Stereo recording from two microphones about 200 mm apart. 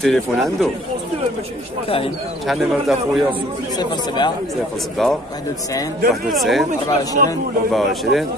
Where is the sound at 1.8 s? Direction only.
25° left (ahead or behind).